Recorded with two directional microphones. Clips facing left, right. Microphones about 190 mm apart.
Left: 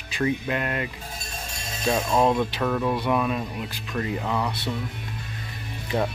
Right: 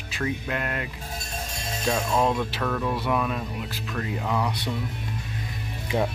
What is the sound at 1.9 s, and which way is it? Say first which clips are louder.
Speech: left 3 dB; 5° left (ahead or behind).